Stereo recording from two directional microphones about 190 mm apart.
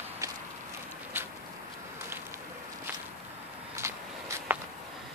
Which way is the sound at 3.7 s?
15° right (ahead or behind).